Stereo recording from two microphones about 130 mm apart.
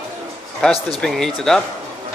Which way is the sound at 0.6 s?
5° left (ahead or behind).